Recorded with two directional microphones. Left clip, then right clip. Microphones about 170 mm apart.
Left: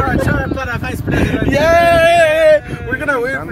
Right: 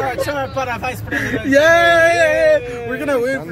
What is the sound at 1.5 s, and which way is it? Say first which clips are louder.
Speech: right 1 dB; 10° right (ahead or behind).